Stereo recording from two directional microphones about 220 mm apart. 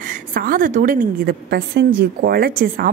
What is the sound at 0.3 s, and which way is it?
A woman's voice, 40° right (ahead or behind).